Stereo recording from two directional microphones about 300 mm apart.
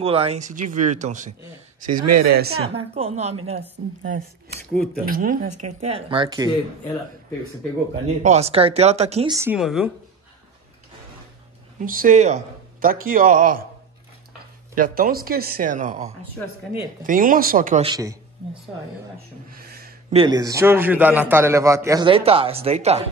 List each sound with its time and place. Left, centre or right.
0.0 s speech: centre
2.0 s speech: right
2.6 s a man's voice: centre
7.9 s speech: right; by 9.8 s centre
11.8 s speech: right
14.8 s speech: right
19.6 s a sound: right
20.2 s a man's voice: centre